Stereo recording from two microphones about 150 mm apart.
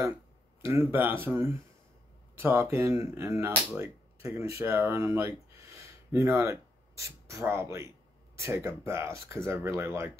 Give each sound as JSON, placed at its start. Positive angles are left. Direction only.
{"t": 0.7, "sound": "speech", "side_deg": -15}